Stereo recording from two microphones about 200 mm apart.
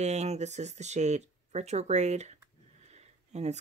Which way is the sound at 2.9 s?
35° right (ahead or behind).